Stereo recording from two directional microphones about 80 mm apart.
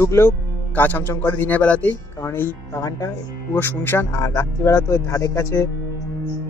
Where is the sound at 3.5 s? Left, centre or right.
Left.